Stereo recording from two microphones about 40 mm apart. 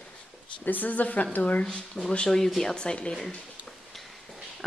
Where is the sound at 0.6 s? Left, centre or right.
Left.